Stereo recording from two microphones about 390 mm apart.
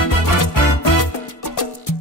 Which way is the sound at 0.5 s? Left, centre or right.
Left.